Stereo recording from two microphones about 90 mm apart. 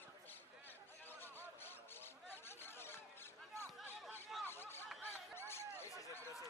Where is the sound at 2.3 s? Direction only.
25° left (ahead or behind).